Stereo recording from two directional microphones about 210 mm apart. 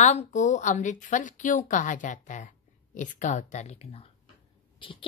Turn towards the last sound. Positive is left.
turn(degrees=30)  # may be behind; listen again after turning